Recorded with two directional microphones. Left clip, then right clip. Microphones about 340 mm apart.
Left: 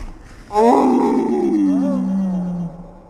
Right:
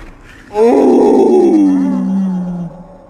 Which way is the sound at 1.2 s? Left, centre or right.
Right.